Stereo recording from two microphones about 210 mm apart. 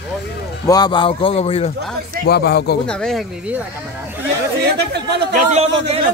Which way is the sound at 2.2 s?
50° left (ahead or behind).